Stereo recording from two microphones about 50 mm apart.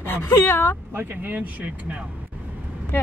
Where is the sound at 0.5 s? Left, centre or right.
Left.